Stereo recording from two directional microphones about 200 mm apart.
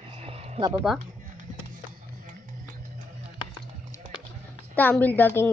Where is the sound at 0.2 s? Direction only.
25° right (ahead or behind).